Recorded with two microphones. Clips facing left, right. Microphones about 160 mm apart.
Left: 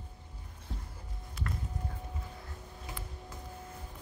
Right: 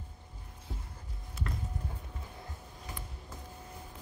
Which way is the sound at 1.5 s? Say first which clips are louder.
Left 1 dB; 20° right (ahead or behind).